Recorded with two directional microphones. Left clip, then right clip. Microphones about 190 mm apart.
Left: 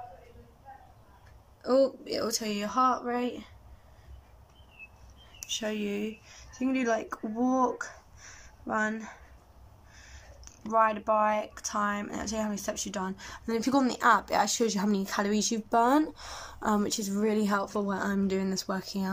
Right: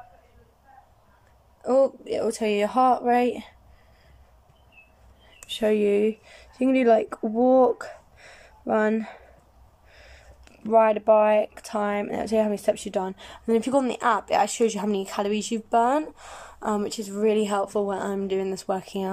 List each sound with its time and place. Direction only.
1.6 s a woman's voice: 10° right (ahead or behind)
5.5 s speech: 25° right (ahead or behind)